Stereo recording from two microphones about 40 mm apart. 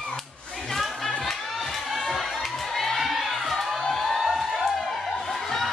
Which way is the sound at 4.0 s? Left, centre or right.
Centre.